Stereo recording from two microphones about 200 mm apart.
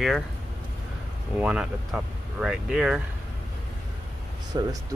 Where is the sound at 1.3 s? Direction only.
5° right (ahead or behind).